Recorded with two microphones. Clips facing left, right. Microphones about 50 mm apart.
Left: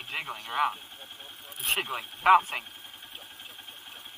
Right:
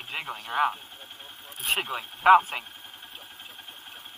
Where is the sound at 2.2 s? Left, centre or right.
Centre.